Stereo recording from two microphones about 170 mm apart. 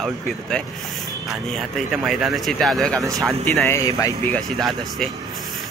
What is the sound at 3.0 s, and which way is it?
Speech, 20° right (ahead or behind).